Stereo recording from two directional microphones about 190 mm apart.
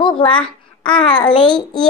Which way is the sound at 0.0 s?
25° left (ahead or behind).